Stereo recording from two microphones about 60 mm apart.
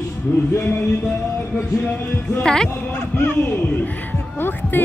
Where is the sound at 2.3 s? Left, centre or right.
Centre.